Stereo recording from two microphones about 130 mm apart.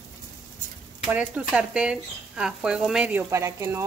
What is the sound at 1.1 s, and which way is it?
Speech, 10° right (ahead or behind).